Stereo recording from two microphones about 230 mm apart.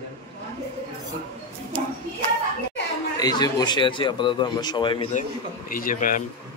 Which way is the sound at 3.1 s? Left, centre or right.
Centre.